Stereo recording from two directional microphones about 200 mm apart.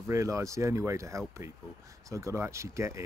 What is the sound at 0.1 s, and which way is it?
Speech, 15° right (ahead or behind).